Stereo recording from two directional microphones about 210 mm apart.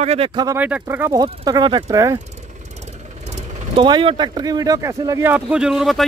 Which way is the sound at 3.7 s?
20° right (ahead or behind).